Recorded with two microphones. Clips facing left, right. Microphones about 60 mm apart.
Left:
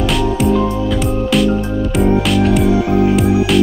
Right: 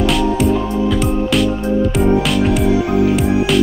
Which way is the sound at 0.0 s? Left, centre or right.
Centre.